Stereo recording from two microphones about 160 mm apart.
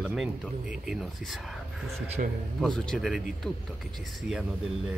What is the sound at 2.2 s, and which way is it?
Speech, 50° right (ahead or behind).